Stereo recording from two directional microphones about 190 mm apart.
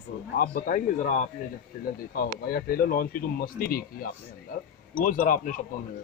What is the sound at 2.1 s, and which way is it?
Speech, 50° left (ahead or behind).